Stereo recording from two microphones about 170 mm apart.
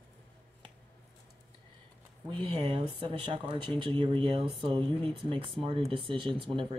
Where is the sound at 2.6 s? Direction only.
30° right (ahead or behind).